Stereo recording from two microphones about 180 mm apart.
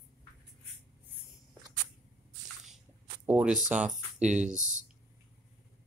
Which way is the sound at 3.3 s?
5° right (ahead or behind).